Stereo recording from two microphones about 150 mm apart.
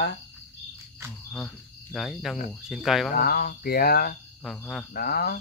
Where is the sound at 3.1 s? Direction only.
80° left.